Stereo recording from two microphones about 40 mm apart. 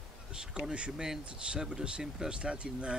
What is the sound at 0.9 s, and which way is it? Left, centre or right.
Speech, centre.